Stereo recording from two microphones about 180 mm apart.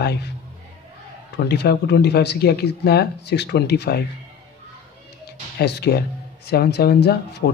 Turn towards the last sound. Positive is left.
turn(degrees=65)  # may be behind; listen again after turning